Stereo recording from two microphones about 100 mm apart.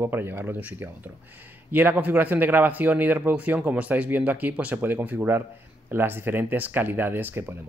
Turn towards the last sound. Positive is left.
turn(degrees=-20)  # may be behind; listen again after turning